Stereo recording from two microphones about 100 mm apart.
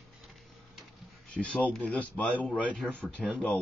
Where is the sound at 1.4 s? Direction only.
10° left (ahead or behind).